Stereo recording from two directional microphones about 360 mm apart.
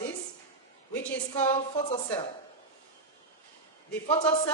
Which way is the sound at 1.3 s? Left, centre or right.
Centre.